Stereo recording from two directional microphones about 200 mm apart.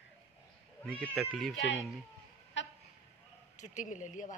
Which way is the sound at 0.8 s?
5° left (ahead or behind).